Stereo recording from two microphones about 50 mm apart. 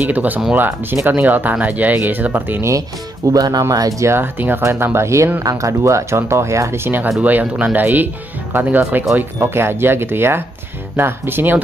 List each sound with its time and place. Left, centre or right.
0.0 s speech: right
3.3 s speech: right
4.2 s speech: right
4.6 s speech: right
5.5 s speech: right
6.8 s speech: right
7.2 s speech: right
9.4 s speech: right